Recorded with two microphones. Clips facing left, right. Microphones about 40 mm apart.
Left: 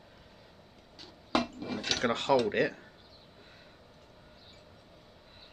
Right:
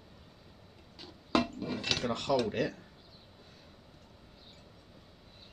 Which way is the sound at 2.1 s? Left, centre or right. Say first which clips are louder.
Left 6 dB; left.